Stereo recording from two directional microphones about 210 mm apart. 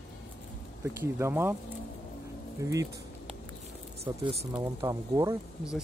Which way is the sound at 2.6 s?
15° right (ahead or behind).